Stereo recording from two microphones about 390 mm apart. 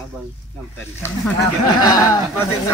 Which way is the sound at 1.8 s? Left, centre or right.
Centre.